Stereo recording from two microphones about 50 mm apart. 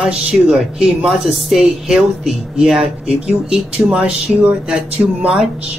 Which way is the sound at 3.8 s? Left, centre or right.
Right.